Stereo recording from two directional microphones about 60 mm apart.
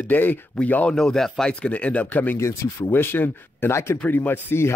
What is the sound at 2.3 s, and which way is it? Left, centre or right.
Speech, left.